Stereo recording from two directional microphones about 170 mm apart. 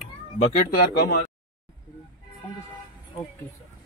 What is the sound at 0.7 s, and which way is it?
Speech, 70° left (ahead or behind).